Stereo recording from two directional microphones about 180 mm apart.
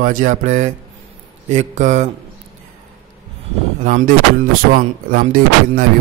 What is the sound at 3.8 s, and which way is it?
Speech, 45° right (ahead or behind).